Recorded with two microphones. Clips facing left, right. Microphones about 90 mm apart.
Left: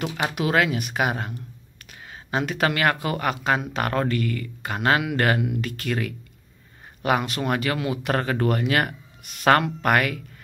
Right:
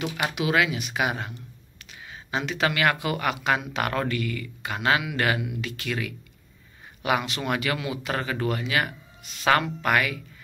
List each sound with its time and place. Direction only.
0.3 s speech: 45° left (ahead or behind)